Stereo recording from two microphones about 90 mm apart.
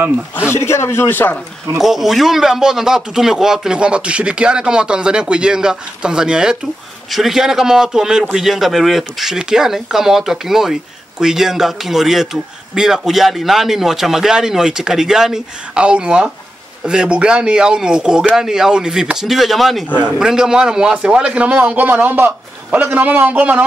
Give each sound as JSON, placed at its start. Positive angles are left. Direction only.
{"t": 0.5, "sound": "speech", "side_deg": 30}
{"t": 1.8, "sound": "a man's voice", "side_deg": 0}